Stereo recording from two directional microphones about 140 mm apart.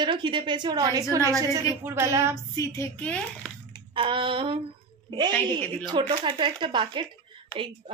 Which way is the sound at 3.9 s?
35° right (ahead or behind).